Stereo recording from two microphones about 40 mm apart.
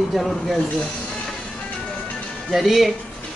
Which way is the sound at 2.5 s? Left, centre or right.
Centre.